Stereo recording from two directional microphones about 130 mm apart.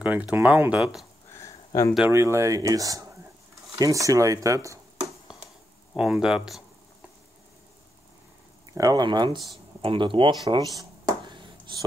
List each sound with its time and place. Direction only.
0.0 s speech: 10° right (ahead or behind)
1.3 s a sound: 25° left (ahead or behind)
2.0 s speech: 20° right (ahead or behind)
5.9 s speech: 5° right (ahead or behind)
8.7 s speech: 30° right (ahead or behind)
10.8 s a sound: 30° right (ahead or behind)